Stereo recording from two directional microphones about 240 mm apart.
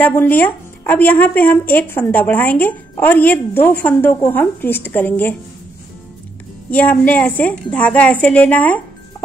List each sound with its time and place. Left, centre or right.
0.0 s a woman's voice: centre
6.7 s a woman's voice: centre